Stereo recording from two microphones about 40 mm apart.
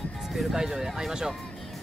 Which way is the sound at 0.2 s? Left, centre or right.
Centre.